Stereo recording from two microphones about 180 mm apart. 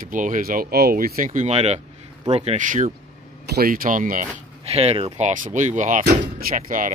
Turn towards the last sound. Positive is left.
turn(degrees=-45)  # may be behind; listen again after turning